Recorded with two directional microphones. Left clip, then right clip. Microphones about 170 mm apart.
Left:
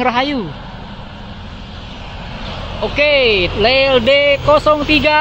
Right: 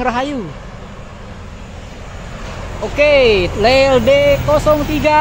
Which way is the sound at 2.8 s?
5° right (ahead or behind).